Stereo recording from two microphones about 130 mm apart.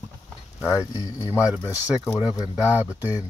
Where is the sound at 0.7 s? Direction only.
25° left (ahead or behind).